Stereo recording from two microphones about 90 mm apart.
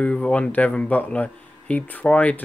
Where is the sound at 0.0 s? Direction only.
15° left (ahead or behind).